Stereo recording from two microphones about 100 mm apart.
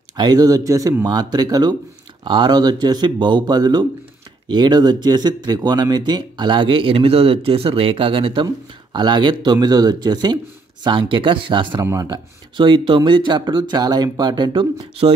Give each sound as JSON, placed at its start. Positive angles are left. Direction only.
{"t": 0.1, "sound": "speech", "side_deg": -45}
{"t": 8.9, "sound": "speech", "side_deg": -50}
{"t": 11.8, "sound": "speech", "side_deg": -35}
{"t": 12.5, "sound": "speech", "side_deg": -55}